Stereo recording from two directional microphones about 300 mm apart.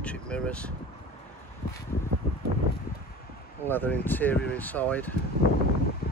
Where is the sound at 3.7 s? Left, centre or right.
Centre.